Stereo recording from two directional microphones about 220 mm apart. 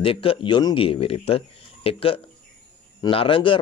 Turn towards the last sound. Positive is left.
turn(degrees=25)  # may be behind; listen again after turning